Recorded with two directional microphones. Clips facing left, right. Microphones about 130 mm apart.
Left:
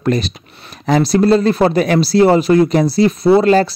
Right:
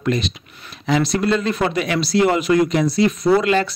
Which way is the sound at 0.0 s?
40° left (ahead or behind).